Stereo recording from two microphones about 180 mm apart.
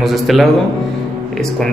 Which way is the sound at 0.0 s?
Centre (ahead or behind).